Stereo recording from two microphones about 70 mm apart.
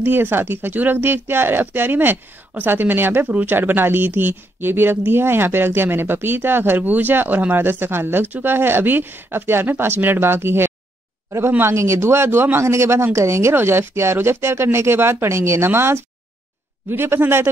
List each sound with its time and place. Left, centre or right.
0.0 s speech: right